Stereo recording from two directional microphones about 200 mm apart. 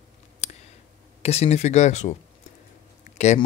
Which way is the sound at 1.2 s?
30° left (ahead or behind).